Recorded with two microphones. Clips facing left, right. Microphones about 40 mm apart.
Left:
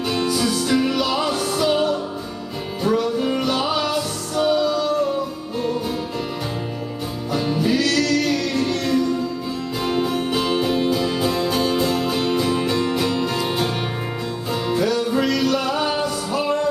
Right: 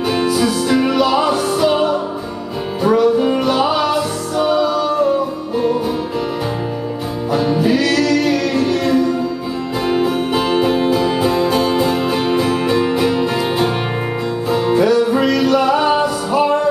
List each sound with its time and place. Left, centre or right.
0.1 s music: centre
7.3 s music: centre